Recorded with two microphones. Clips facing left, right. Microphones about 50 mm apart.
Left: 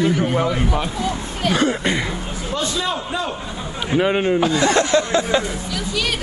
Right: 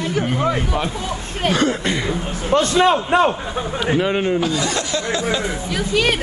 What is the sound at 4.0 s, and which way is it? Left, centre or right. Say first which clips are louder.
Speech: left 5 dB; centre.